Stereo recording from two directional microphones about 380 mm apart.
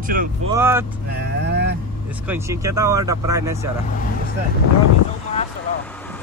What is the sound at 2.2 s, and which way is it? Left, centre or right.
Speech, centre.